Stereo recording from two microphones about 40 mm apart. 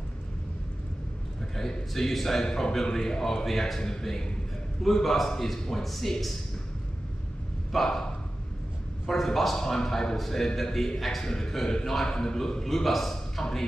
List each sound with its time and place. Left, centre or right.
1.5 s a man's voice: centre
7.7 s bow-wow: centre
9.0 s a man's voice: centre
12.6 s a man's voice: centre